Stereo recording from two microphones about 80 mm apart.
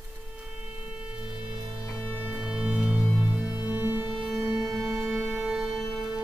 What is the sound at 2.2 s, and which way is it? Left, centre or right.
Music, centre.